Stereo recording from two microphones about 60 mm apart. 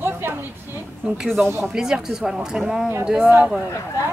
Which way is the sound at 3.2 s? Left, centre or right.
Right.